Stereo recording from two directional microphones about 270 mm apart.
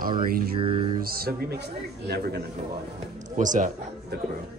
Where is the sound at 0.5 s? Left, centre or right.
Centre.